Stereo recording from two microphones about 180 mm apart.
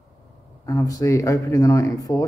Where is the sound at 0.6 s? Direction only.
20° left (ahead or behind).